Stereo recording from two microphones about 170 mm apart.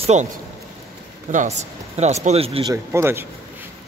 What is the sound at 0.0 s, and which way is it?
Speech, 40° right (ahead or behind).